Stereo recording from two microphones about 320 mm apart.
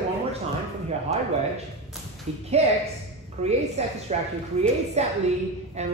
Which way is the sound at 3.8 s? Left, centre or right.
Centre.